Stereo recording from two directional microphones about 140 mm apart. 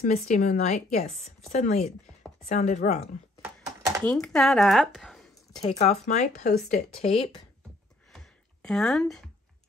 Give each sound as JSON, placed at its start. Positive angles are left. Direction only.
{"t": 0.0, "sound": "a woman's voice", "side_deg": 55}
{"t": 4.0, "sound": "speech", "side_deg": 5}
{"t": 5.6, "sound": "speech", "side_deg": 50}
{"t": 8.6, "sound": "speech", "side_deg": 5}